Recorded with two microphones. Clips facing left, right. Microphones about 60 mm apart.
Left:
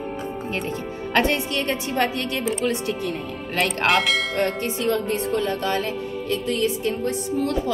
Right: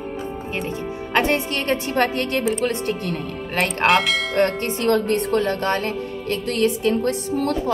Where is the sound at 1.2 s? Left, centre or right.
Right.